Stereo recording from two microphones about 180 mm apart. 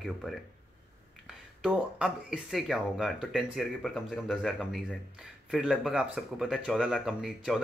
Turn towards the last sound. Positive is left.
turn(degrees=0)  # may be behind; listen again after turning